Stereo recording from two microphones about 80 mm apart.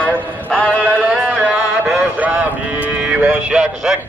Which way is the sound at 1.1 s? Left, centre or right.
Centre.